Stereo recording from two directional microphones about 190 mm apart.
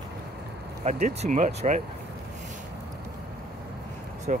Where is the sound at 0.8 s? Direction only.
35° right (ahead or behind).